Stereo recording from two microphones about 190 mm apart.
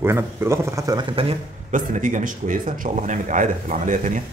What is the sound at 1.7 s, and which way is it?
Speech, 40° right (ahead or behind).